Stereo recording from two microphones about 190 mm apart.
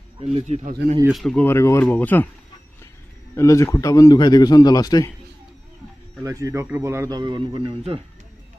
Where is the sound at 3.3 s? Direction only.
15° left (ahead or behind).